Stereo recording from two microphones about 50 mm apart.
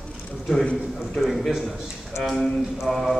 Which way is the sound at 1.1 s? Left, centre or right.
Centre.